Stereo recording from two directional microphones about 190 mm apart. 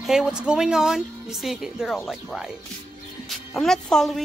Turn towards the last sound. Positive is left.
turn(degrees=0)  # may be behind; listen again after turning